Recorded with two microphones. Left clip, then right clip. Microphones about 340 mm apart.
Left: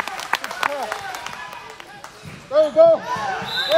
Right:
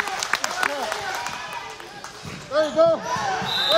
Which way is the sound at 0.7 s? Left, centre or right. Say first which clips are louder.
Left 5 dB; centre.